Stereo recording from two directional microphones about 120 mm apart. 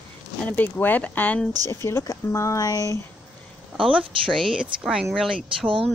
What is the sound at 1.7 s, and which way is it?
Speech, 25° left (ahead or behind).